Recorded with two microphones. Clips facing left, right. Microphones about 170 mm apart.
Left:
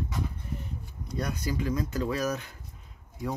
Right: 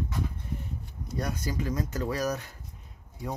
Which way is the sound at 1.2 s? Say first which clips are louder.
Left 1 dB; 40° right (ahead or behind).